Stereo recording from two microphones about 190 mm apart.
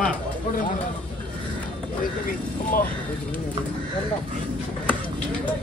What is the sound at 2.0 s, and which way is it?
Speech, 50° left (ahead or behind).